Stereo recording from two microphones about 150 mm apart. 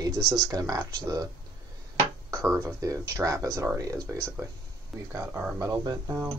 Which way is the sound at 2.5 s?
20° right (ahead or behind).